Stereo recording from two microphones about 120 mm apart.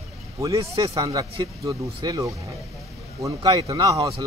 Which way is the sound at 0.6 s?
50° right (ahead or behind).